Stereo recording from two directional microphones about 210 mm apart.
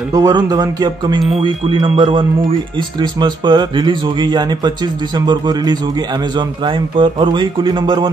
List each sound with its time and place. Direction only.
0.1 s speech: 15° right (ahead or behind)